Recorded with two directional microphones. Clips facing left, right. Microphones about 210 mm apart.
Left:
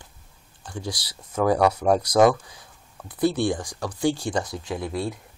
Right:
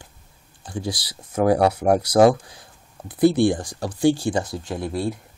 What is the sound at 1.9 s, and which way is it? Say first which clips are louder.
Speech: right 4 dB; 10° right (ahead or behind).